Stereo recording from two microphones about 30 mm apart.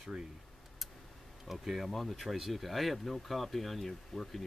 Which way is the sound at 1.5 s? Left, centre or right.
Centre.